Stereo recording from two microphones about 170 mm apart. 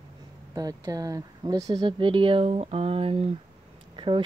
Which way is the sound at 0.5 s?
20° right (ahead or behind).